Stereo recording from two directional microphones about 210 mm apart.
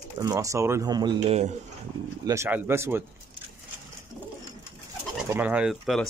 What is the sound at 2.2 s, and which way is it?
Speech, 15° right (ahead or behind).